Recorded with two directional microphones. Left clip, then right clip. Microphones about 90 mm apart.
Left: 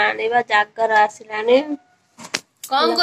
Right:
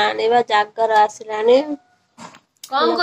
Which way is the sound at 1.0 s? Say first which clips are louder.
Right 2 dB; 45° right (ahead or behind).